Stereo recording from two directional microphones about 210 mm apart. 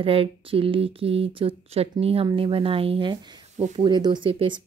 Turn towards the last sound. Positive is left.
turn(degrees=-20)  # may be behind; listen again after turning